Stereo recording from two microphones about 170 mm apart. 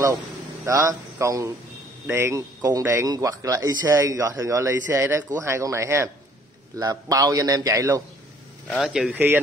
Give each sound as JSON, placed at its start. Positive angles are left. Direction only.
{"t": 0.7, "sound": "a man's voice", "side_deg": -15}
{"t": 8.6, "sound": "speech", "side_deg": 0}